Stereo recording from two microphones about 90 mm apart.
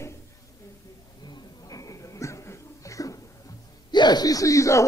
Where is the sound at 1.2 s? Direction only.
50° left (ahead or behind).